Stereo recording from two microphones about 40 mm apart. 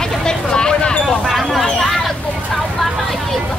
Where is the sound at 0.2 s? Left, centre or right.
Centre.